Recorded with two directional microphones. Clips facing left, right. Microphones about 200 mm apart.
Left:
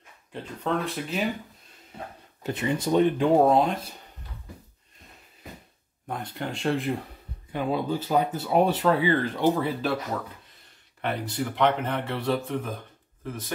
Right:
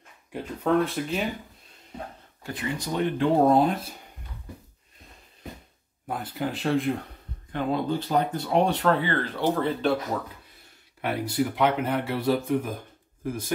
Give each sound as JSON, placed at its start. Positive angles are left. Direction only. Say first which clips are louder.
{"t": 0.3, "sound": "speech", "louder": "right 4 dB", "side_deg": -5}
{"t": 2.4, "sound": "speech", "louder": "left 5 dB", "side_deg": 20}
{"t": 3.4, "sound": "speech", "louder": "right 1 dB", "side_deg": 0}
{"t": 6.0, "sound": "speech", "louder": "right 3 dB", "side_deg": -5}
{"t": 11.0, "sound": "speech", "louder": "right 3 dB", "side_deg": -10}